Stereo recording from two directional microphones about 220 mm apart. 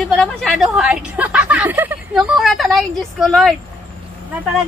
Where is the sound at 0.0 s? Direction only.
Centre (ahead or behind).